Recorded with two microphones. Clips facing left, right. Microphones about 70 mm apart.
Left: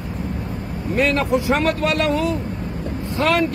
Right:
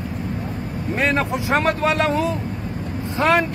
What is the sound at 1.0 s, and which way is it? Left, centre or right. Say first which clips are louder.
Speech: left 3 dB; right.